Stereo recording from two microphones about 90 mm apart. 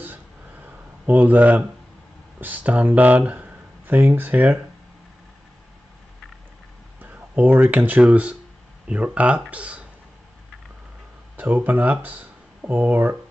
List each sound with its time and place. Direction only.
0.0 s a sound: 20° right (ahead or behind)
2.4 s speech: 15° right (ahead or behind)
7.0 s speech: 20° right (ahead or behind)
11.3 s speech: 20° right (ahead or behind)